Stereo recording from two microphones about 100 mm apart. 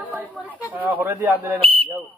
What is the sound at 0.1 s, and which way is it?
Speech, 15° right (ahead or behind).